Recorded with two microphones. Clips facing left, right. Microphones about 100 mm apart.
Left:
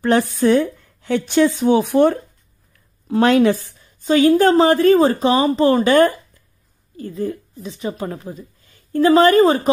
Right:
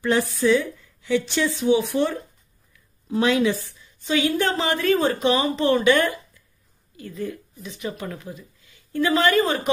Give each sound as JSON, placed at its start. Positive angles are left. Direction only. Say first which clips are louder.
{"t": 0.0, "sound": "a woman's voice", "louder": "left 5 dB", "side_deg": 50}
{"t": 3.8, "sound": "a woman's voice", "louder": "left 9 dB", "side_deg": 40}